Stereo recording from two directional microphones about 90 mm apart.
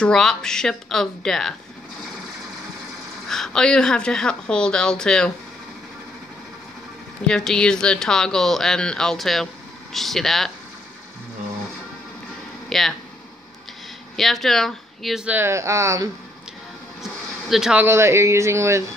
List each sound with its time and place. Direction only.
0.0 s speech: 5° left (ahead or behind)
3.3 s speech: 5° left (ahead or behind)
7.2 s speech: 10° left (ahead or behind)
12.6 s a sound: 5° left (ahead or behind)
14.1 s speech: centre (ahead or behind)
15.2 s speech: 25° right (ahead or behind)
17.0 s a sound: 5° right (ahead or behind)
17.7 s speech: 30° right (ahead or behind)